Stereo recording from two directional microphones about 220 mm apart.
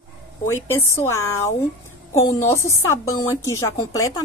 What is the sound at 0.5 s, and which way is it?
A woman's voice, 10° left (ahead or behind).